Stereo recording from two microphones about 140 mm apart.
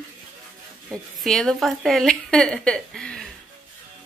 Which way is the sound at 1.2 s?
5° left (ahead or behind).